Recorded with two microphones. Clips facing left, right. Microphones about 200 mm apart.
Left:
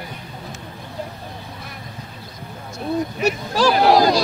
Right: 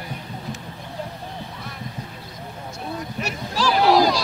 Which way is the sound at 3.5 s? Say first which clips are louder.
Left 2 dB; 50° left (ahead or behind).